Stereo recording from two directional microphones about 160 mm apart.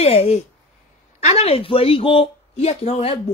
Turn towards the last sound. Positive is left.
turn(degrees=35)  # may be behind; listen again after turning